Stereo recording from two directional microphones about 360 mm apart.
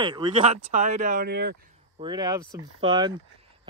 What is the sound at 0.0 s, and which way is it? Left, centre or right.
Speech, centre.